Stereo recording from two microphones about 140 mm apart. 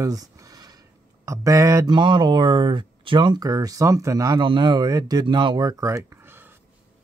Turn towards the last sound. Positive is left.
turn(degrees=-15)  # may be behind; listen again after turning